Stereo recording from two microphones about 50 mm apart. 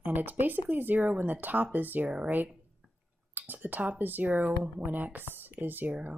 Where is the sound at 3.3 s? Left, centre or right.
Right.